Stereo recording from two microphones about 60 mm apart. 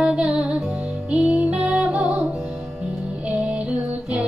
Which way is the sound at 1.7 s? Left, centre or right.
Centre.